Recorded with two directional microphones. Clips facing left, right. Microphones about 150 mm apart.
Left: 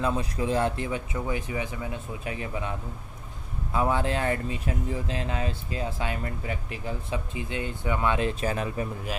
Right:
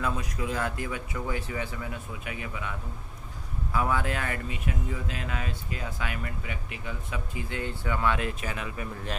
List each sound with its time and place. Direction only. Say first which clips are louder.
0.0 s speech: left 4 dB; 25° left (ahead or behind)
2.2 s speech: left 5 dB; 35° left (ahead or behind)
3.7 s speech: left 3 dB; 25° left (ahead or behind)